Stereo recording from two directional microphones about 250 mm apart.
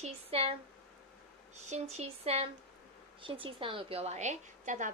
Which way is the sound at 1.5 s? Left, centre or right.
Right.